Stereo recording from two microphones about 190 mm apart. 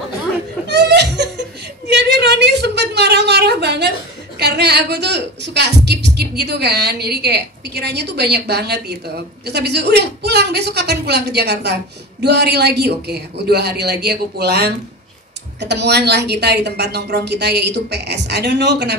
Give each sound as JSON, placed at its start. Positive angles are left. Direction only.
{"t": 0.7, "sound": "laughter", "side_deg": -65}
{"t": 1.9, "sound": "a sound", "side_deg": -60}
{"t": 4.4, "sound": "a woman's voice", "side_deg": -60}